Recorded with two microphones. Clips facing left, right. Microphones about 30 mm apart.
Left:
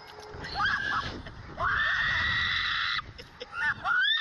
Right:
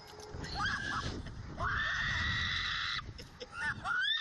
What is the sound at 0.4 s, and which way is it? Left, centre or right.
Neigh, left.